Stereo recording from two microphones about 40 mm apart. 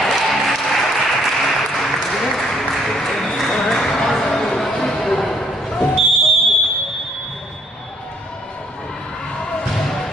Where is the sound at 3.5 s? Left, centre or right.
Centre.